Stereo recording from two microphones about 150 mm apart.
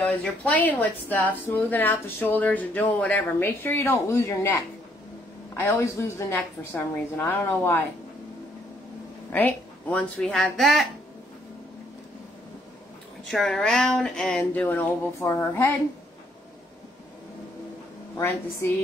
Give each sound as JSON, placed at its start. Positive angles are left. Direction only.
{"t": 0.0, "sound": "a woman's voice", "side_deg": 10}
{"t": 5.6, "sound": "a woman's voice", "side_deg": 20}
{"t": 9.3, "sound": "speech", "side_deg": 10}
{"t": 13.2, "sound": "speech", "side_deg": 0}
{"t": 18.1, "sound": "a woman's voice", "side_deg": 15}